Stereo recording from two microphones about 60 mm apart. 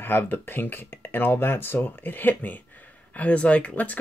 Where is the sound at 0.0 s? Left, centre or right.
Left.